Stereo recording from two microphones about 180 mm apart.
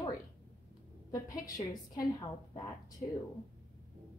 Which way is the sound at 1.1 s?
20° left (ahead or behind).